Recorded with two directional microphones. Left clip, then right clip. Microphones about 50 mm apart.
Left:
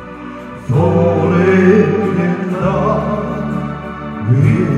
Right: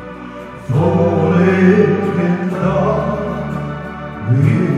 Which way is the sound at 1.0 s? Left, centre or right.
Left.